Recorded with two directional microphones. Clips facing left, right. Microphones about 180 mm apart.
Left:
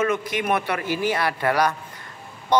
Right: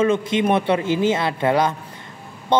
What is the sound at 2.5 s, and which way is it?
Music, 25° right (ahead or behind).